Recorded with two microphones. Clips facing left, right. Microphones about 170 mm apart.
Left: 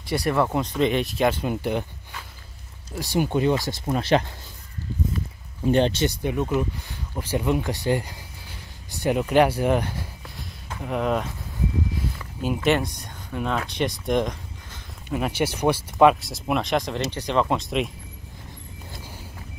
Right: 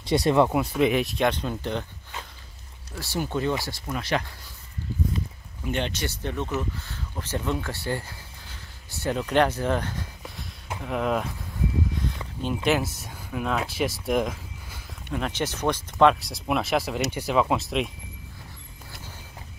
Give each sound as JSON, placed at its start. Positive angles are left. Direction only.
{"t": 0.0, "sound": "speech", "side_deg": -20}
{"t": 0.5, "sound": "speech", "side_deg": -5}
{"t": 2.9, "sound": "speech", "side_deg": 15}
{"t": 3.8, "sound": "speech", "side_deg": 30}
{"t": 5.6, "sound": "speech", "side_deg": 35}
{"t": 6.0, "sound": "speech", "side_deg": 10}
{"t": 10.8, "sound": "speech", "side_deg": 0}
{"t": 12.6, "sound": "speech", "side_deg": -5}
{"t": 15.0, "sound": "speech", "side_deg": 10}